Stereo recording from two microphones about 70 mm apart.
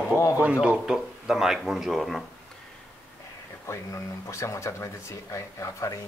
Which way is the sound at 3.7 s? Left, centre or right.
Left.